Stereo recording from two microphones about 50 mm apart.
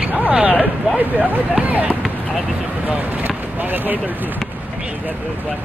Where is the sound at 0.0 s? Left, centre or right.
Right.